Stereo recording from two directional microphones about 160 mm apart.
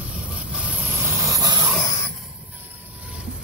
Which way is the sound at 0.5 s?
10° right (ahead or behind).